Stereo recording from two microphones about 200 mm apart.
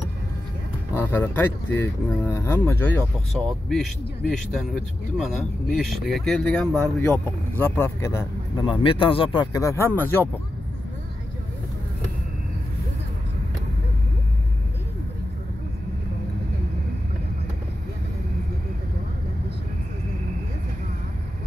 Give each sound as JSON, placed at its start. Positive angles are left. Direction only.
{"t": 0.9, "sound": "speech", "side_deg": 10}
{"t": 8.6, "sound": "speech", "side_deg": 25}